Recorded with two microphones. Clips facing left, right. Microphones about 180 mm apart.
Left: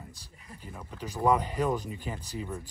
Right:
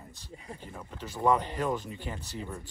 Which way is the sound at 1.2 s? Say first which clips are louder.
Left 1 dB; 5° left (ahead or behind).